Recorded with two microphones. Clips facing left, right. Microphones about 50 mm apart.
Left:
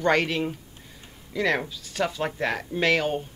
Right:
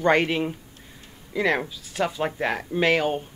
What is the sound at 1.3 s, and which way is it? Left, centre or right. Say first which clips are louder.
Speech: right 1 dB; centre.